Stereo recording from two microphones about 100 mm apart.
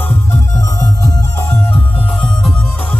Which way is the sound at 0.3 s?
30° left (ahead or behind).